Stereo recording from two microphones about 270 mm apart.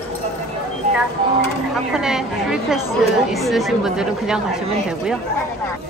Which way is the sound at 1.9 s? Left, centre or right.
Centre.